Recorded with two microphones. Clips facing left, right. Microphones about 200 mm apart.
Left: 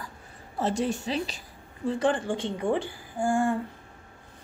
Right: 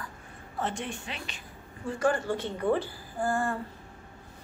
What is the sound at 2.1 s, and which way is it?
A woman's voice, 15° left (ahead or behind).